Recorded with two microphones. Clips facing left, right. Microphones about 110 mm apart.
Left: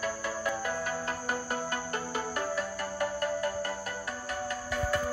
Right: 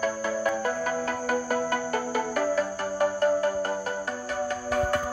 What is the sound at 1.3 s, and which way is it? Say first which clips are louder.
Music: right 8 dB; 90° right.